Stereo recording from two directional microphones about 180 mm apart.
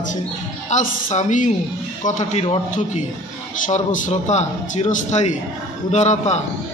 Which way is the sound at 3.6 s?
45° left (ahead or behind).